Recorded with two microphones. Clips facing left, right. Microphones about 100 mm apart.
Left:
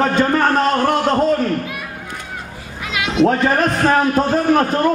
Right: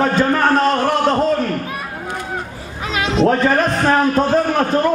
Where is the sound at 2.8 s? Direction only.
35° right (ahead or behind).